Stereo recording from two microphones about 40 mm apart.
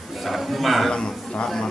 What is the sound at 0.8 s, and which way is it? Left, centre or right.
Speech, centre.